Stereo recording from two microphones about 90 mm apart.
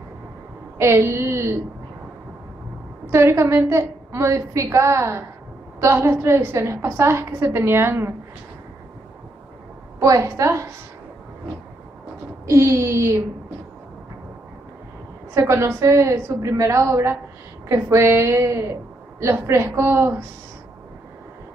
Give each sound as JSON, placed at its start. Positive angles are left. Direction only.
{"t": 0.7, "sound": "a woman's voice", "side_deg": -30}
{"t": 3.1, "sound": "a woman's voice", "side_deg": -30}
{"t": 9.9, "sound": "a woman's voice", "side_deg": -35}
{"t": 12.4, "sound": "a woman's voice", "side_deg": -35}
{"t": 15.3, "sound": "a woman's voice", "side_deg": -30}